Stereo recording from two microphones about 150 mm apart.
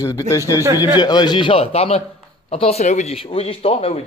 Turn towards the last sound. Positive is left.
turn(degrees=40)  # may be behind; listen again after turning